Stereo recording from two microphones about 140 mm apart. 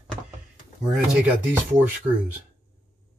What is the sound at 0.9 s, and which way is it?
Speech, 5° right (ahead or behind).